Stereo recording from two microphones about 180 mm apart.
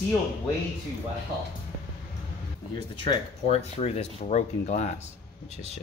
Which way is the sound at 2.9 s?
25° left (ahead or behind).